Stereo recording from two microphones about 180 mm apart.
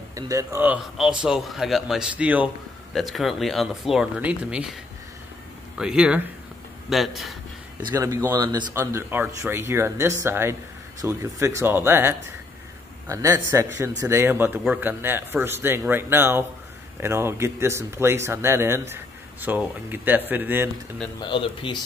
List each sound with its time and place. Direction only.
0.1 s a man's voice: 20° right (ahead or behind)
5.8 s a man's voice: 5° right (ahead or behind)
7.8 s speech: 20° right (ahead or behind)
21.2 s speech: 25° left (ahead or behind)